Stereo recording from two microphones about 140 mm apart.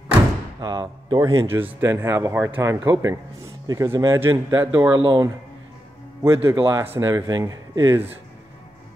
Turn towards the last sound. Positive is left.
turn(degrees=-20)  # may be behind; listen again after turning